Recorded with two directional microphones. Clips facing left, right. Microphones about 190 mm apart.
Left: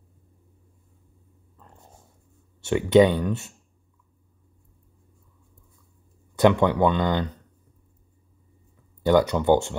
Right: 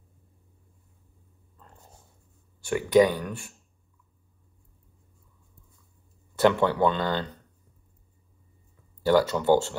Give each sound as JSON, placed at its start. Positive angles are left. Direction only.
{"t": 2.6, "sound": "speech", "side_deg": 25}
{"t": 6.3, "sound": "speech", "side_deg": 15}
{"t": 9.0, "sound": "speech", "side_deg": 20}